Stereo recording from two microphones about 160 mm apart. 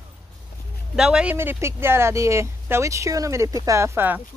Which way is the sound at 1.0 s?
5° right (ahead or behind).